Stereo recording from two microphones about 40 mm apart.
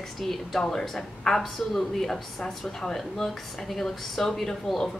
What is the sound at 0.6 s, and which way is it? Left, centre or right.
A woman's voice, centre.